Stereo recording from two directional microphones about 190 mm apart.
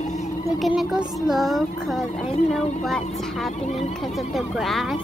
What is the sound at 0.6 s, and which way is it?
Speech, centre (ahead or behind).